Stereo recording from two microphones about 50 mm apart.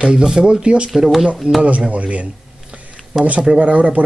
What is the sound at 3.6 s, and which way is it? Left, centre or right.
Speech, right.